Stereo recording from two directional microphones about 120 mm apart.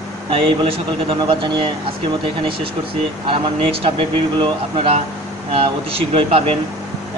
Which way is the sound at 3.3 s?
45° right (ahead or behind).